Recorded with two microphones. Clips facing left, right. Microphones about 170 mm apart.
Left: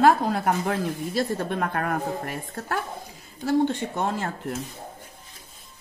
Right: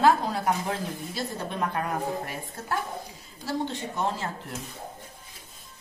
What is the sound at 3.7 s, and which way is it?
Speech, 50° left (ahead or behind).